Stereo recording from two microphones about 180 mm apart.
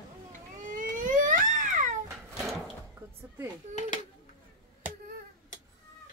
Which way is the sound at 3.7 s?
40° left (ahead or behind).